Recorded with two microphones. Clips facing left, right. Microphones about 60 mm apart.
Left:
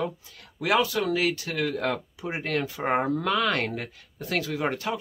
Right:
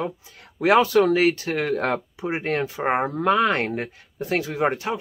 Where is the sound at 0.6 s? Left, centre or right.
Right.